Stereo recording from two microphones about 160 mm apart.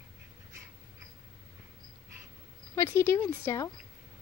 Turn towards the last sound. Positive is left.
turn(degrees=20)  # may be behind; listen again after turning